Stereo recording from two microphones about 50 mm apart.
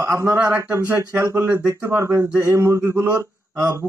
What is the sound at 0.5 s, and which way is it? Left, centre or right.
Speech, right.